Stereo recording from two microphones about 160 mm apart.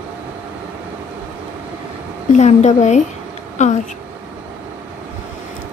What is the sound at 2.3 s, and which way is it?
Speech, 45° left (ahead or behind).